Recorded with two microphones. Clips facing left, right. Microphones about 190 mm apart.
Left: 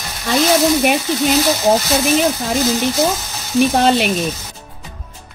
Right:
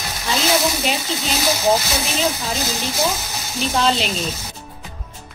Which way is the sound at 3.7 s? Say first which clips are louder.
Left 5 dB; 60° left (ahead or behind).